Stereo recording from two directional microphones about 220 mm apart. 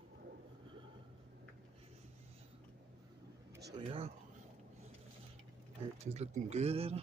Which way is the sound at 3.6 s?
25° right (ahead or behind).